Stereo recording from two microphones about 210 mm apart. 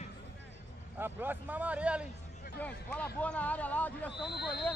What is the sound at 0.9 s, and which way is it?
Speech, 10° right (ahead or behind).